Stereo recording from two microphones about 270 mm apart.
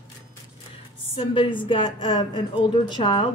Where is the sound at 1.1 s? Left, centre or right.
Centre.